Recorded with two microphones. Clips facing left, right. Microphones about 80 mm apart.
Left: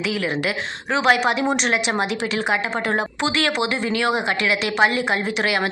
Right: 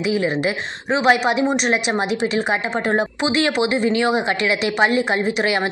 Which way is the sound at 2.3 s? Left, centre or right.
Right.